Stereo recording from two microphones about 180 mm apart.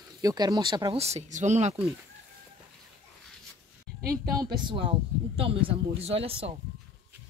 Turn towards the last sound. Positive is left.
turn(degrees=-30)  # may be behind; listen again after turning